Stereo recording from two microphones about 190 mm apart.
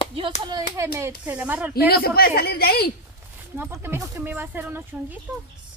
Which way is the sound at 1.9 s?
55° left (ahead or behind).